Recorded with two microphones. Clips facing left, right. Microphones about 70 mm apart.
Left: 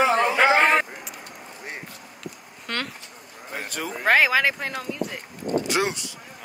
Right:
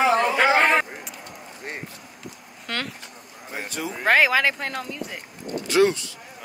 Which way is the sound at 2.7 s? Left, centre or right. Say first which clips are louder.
Even; centre.